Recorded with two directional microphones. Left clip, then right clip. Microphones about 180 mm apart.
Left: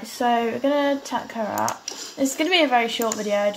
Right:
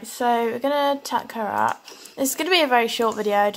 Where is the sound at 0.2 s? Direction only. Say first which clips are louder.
Even; 30° right (ahead or behind).